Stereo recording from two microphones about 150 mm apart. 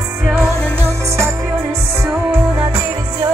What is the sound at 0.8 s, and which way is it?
Music, 20° right (ahead or behind).